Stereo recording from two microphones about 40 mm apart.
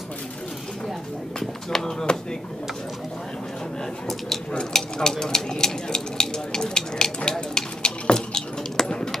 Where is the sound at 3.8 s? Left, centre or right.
Centre.